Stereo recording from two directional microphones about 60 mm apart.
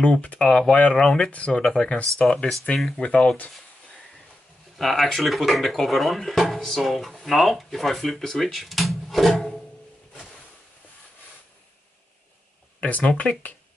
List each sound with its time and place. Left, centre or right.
0.0 s speech: left
4.7 s speech: centre
12.8 s speech: left